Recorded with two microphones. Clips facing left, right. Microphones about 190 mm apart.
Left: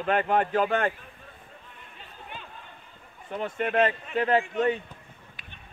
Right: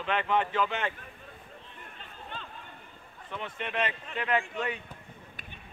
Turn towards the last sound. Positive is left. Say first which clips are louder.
# left 7 dB
turn(degrees=35)  # may be behind; listen again after turning